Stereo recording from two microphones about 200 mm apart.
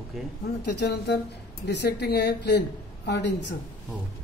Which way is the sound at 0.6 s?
55° left (ahead or behind).